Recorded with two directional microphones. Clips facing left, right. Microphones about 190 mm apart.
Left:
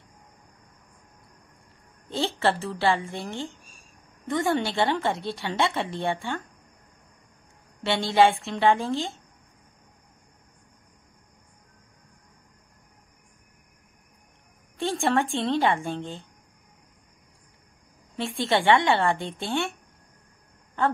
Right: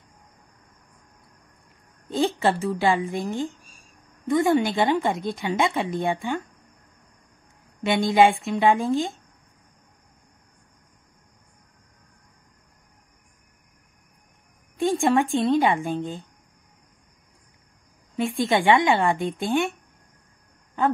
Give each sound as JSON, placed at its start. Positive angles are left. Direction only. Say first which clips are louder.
{"t": 2.0, "sound": "a woman's voice", "louder": "right 3 dB", "side_deg": -15}
{"t": 7.8, "sound": "a woman's voice", "louder": "right 2 dB", "side_deg": -15}
{"t": 14.8, "sound": "a sound", "louder": "right 4 dB", "side_deg": -15}
{"t": 15.3, "sound": "a woman's voice", "louder": "right 4 dB", "side_deg": -15}
{"t": 18.1, "sound": "a woman's voice", "louder": "right 3 dB", "side_deg": -15}